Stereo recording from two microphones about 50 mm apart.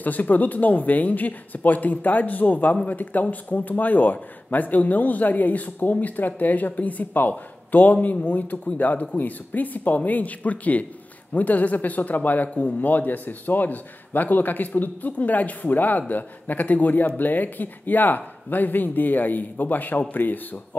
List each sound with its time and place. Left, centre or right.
0.0 s speech: left